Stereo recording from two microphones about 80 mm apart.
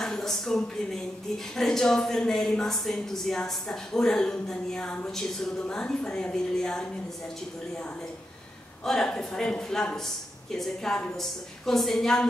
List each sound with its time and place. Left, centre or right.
0.0 s a woman's voice: centre
8.8 s a woman's voice: centre